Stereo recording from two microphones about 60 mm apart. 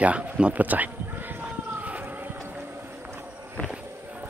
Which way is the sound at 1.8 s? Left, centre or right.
Right.